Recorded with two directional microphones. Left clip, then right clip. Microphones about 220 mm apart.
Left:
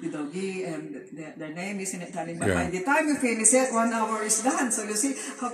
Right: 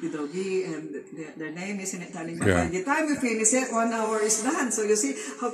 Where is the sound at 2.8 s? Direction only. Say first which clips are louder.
Left 2 dB; centre (ahead or behind).